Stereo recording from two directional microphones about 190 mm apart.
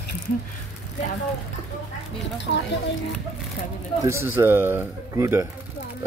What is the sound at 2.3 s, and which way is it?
Speech, 70° left (ahead or behind).